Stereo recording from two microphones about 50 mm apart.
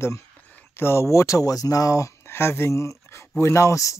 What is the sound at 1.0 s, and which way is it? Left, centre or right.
Speech, left.